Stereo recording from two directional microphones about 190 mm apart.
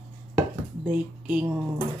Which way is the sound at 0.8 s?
5° right (ahead or behind).